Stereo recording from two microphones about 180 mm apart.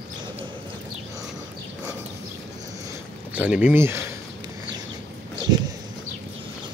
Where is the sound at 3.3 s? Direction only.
10° right (ahead or behind).